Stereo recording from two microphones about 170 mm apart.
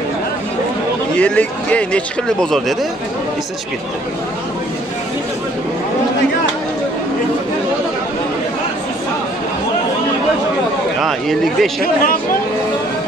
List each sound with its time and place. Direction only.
1.1 s speech: 10° left (ahead or behind)
11.0 s speech: centre (ahead or behind)
11.8 s speech: 55° left (ahead or behind)